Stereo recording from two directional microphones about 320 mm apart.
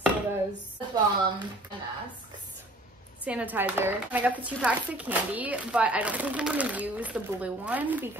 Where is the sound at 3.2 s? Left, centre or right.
Centre.